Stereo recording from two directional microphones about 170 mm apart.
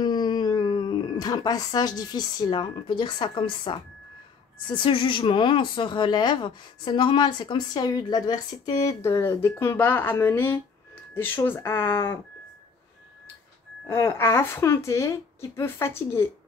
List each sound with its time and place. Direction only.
0.0 s speech: 25° left (ahead or behind)
13.8 s speech: 15° left (ahead or behind)